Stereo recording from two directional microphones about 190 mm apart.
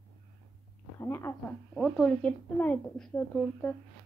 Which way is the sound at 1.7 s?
Centre (ahead or behind).